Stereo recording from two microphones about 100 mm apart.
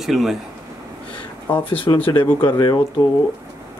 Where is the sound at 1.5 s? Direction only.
60° left (ahead or behind).